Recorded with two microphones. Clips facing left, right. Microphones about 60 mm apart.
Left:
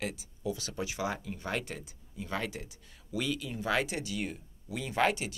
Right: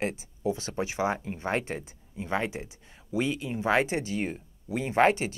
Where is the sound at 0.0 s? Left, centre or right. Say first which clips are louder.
Right 6 dB; right.